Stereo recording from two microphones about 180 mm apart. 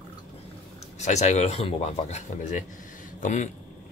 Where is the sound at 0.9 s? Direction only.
40° left (ahead or behind).